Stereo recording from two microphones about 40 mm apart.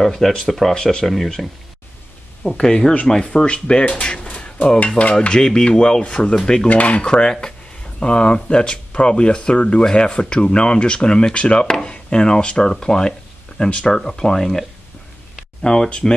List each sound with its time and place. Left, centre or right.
0.0 s speech: centre
2.6 s speech: centre
4.5 s stir: left
5.3 s speech: centre
6.7 s stir: left
7.0 s speech: left
13.9 s speech: centre
15.6 s speech: centre